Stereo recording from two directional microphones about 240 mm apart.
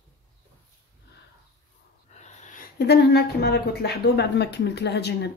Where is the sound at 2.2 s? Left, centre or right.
Left.